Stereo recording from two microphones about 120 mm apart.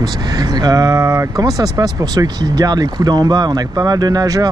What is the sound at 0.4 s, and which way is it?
Speech, 35° right (ahead or behind).